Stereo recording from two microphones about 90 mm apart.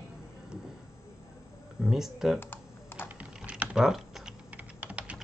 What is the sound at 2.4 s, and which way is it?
Computer keyboard, 25° left (ahead or behind).